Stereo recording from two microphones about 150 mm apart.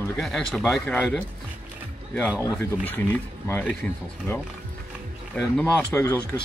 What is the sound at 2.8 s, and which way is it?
Speech, 10° left (ahead or behind).